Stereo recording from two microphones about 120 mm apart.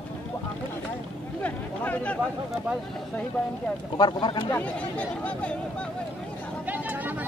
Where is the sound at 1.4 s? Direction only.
10° left (ahead or behind).